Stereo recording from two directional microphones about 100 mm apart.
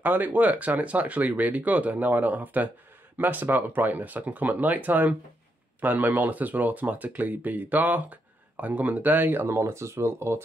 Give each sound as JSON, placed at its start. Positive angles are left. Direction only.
{"t": 0.0, "sound": "speech", "side_deg": -15}